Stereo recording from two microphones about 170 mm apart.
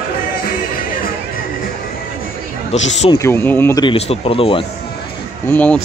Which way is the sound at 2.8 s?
90° left.